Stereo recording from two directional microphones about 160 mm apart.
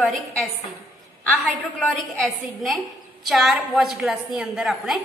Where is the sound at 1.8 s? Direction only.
5° left (ahead or behind).